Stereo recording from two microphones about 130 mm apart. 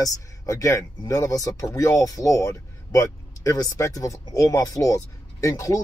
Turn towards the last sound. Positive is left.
turn(degrees=25)  # may be behind; listen again after turning